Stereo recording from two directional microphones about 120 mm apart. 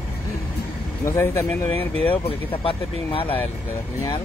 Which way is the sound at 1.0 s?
25° left (ahead or behind).